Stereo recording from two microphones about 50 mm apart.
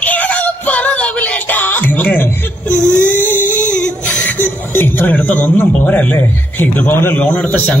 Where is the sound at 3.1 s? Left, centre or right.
Left.